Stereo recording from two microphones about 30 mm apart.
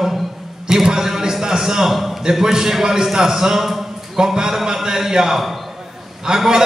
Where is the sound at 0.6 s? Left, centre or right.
Centre.